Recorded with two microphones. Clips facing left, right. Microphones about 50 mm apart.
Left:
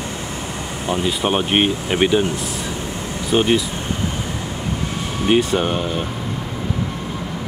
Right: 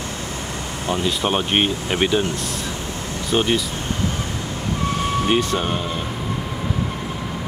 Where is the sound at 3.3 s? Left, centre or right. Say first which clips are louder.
Left 3 dB; centre.